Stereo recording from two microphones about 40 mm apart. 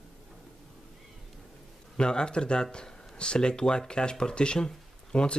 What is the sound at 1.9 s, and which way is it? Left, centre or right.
Speech, left.